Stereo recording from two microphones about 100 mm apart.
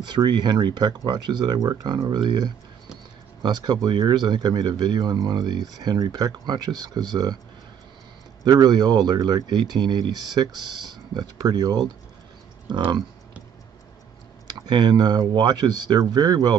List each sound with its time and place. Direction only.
0.1 s speech: 45° right (ahead or behind)
8.5 s speech: 40° right (ahead or behind)
14.5 s speech: 45° right (ahead or behind)